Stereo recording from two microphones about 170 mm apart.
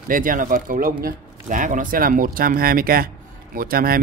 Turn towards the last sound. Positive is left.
turn(degrees=-60)  # may be behind; listen again after turning